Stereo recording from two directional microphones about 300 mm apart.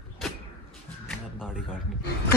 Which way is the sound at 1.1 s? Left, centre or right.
Centre.